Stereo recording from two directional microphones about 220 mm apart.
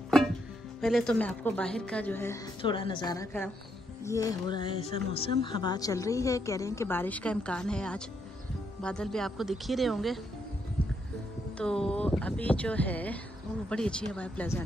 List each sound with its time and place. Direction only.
0.7 s speech: centre (ahead or behind)
2.6 s a woman's voice: 20° left (ahead or behind); by 10.2 s centre (ahead or behind)
11.5 s speech: 5° left (ahead or behind)